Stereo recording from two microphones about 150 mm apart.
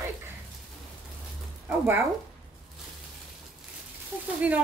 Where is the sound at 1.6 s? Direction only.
15° right (ahead or behind).